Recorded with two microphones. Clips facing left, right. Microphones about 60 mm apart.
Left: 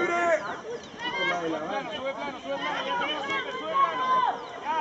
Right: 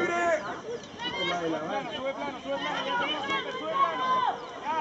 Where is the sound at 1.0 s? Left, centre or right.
Left.